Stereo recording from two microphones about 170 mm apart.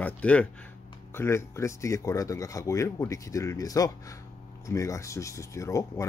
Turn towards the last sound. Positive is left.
turn(degrees=20)  # may be behind; listen again after turning